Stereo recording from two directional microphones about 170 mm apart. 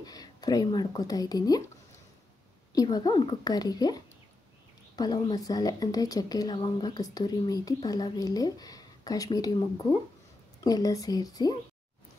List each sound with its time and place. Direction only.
0.0 s speech: 20° left (ahead or behind)
2.7 s a woman's voice: 20° left (ahead or behind)